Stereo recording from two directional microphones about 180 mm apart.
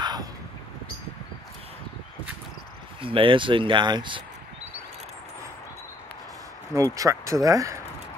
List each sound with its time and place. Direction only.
0.0 s crow: 20° right (ahead or behind)
3.0 s speech: 30° right (ahead or behind)
6.7 s speech: 15° right (ahead or behind)